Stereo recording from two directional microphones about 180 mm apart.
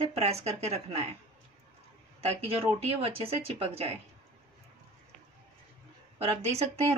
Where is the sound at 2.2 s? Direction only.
35° right (ahead or behind).